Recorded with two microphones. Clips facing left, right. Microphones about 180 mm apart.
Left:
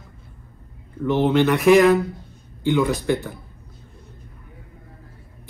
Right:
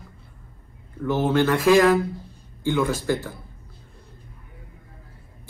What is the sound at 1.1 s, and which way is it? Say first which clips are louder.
Speech: left 3 dB; 20° left (ahead or behind).